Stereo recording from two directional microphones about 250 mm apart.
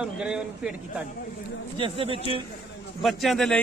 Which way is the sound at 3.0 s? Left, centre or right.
Centre.